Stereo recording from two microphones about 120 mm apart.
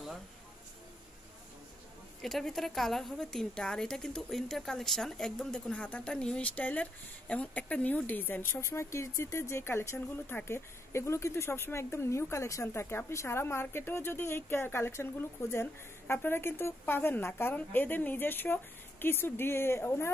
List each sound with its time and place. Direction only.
2.2 s a woman's voice: 5° left (ahead or behind); by 20.1 s 20° left (ahead or behind)